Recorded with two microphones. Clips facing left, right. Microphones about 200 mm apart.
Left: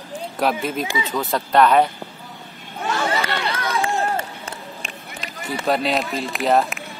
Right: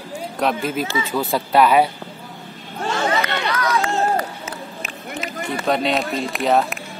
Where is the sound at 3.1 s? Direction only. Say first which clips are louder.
Right 2 dB; 30° left (ahead or behind).